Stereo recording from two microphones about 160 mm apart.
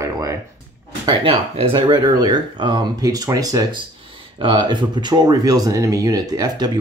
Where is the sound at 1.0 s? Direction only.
30° right (ahead or behind).